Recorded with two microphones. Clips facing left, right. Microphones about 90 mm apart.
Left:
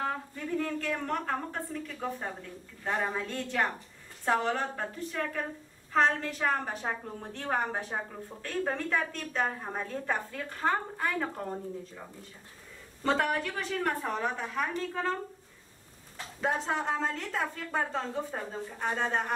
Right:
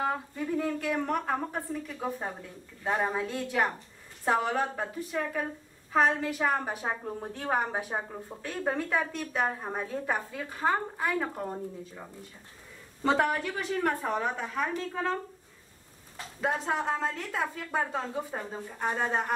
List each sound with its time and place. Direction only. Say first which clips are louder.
0.0 s a woman's voice: right 3 dB; 10° right (ahead or behind)
16.3 s a woman's voice: right 1 dB; centre (ahead or behind)